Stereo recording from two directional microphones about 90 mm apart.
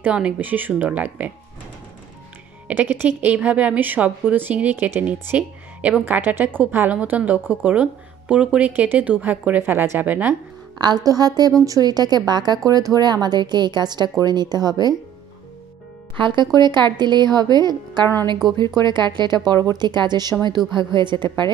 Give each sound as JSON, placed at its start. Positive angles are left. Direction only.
{"t": 0.0, "sound": "a woman's voice", "side_deg": -15}
{"t": 2.7, "sound": "a woman's voice", "side_deg": -20}
{"t": 10.8, "sound": "speech", "side_deg": -50}
{"t": 16.2, "sound": "speech", "side_deg": -60}